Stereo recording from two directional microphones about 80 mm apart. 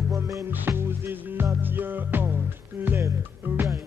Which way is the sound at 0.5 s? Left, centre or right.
Right.